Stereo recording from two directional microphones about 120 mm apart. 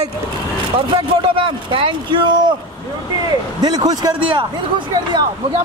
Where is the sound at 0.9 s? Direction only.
45° right (ahead or behind).